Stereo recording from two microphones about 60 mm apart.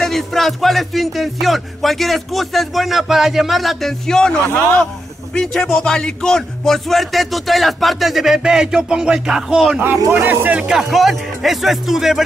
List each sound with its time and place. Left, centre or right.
0.0 s speech: centre
4.1 s speech: centre
10.1 s speech: right
10.7 s speech: centre